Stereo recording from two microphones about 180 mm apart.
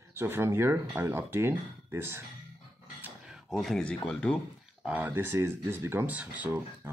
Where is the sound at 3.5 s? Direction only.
Centre (ahead or behind).